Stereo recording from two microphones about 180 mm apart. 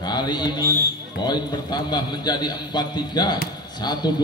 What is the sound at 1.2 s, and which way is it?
A man's voice, 25° left (ahead or behind).